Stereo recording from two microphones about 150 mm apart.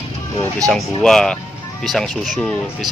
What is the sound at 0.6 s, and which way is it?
Speech, 5° left (ahead or behind).